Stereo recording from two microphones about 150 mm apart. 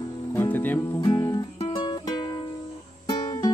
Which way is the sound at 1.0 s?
30° left (ahead or behind).